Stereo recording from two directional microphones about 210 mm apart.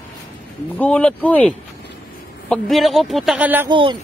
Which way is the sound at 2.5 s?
Centre (ahead or behind).